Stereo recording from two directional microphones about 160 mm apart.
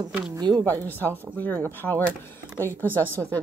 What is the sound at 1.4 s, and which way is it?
Speech, 10° left (ahead or behind).